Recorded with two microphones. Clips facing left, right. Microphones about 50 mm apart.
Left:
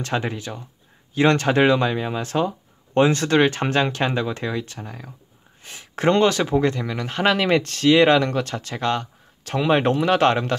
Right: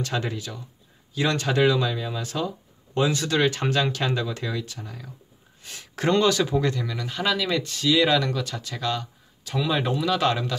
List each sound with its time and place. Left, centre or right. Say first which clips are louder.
0.3 s speech: left 3 dB; left